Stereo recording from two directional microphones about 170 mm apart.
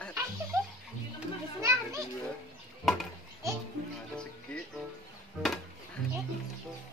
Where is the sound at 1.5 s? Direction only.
15° right (ahead or behind).